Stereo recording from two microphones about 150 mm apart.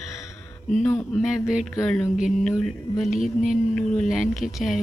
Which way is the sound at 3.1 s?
60° left (ahead or behind).